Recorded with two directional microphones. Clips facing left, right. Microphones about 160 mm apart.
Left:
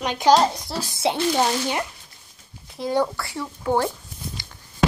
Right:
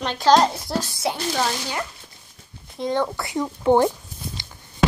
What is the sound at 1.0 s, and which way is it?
Speech, 25° left (ahead or behind).